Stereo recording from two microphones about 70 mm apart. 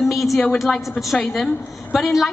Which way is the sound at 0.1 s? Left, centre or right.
Centre.